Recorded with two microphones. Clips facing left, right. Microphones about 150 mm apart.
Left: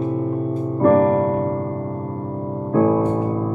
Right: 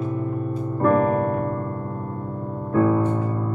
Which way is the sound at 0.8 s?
30° left (ahead or behind).